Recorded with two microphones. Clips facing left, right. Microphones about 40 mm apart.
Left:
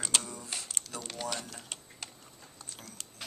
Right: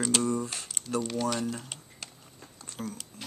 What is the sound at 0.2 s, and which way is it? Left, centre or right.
Typing, right.